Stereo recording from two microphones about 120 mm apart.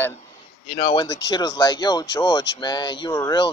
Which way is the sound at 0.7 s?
45° left (ahead or behind).